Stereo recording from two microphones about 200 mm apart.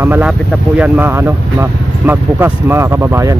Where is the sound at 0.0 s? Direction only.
10° right (ahead or behind).